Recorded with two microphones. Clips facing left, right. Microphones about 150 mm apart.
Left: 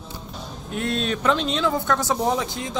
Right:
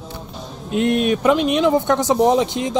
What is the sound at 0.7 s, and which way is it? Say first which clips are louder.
A woman's voice: right 8 dB; 20° right (ahead or behind).